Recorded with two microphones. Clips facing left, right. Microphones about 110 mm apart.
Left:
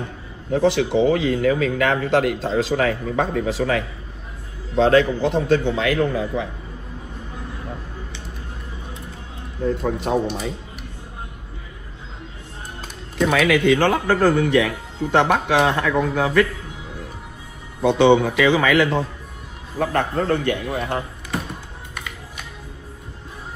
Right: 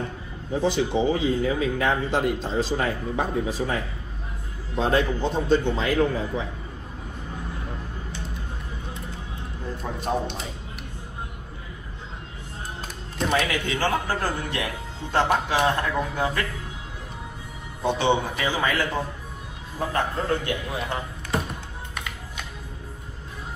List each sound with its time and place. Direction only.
0.5 s a man's voice: 65° left (ahead or behind); by 6.4 s 80° left
13.3 s speech: 70° left (ahead or behind)
17.8 s speech: 65° left (ahead or behind); by 18.9 s 90° left
19.8 s speech: 65° left (ahead or behind)
21.9 s music: centre (ahead or behind)